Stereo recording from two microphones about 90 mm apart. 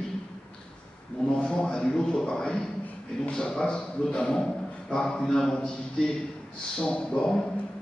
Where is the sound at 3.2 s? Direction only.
10° left (ahead or behind).